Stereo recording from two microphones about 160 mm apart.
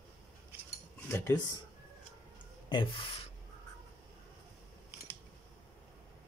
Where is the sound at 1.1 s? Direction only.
15° left (ahead or behind).